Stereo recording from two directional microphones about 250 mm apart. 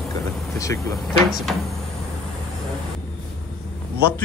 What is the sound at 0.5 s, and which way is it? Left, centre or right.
Vehicle, centre.